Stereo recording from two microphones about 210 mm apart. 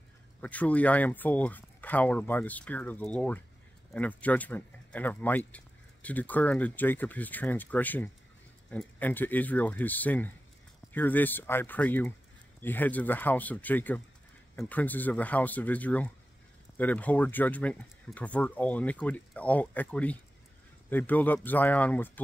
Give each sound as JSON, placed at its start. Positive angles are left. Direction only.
{"t": 0.4, "sound": "speech", "side_deg": 5}